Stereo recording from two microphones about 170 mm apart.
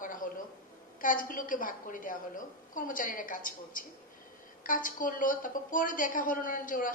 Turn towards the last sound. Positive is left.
turn(degrees=50)  # may be behind; listen again after turning